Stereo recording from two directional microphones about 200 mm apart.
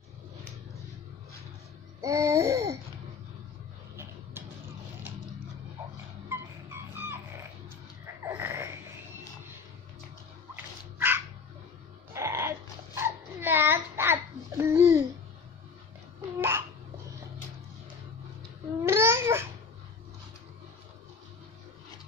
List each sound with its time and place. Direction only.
2.0 s babbling: 15° right (ahead or behind)
3.9 s a sound: 10° right (ahead or behind)
6.2 s music: 10° right (ahead or behind)
8.2 s a sound: 10° right (ahead or behind)
10.5 s dog: 10° right (ahead or behind)
14.6 s babbling: 10° right (ahead or behind)
16.3 s babbling: 10° right (ahead or behind)
18.9 s babbling: 15° right (ahead or behind)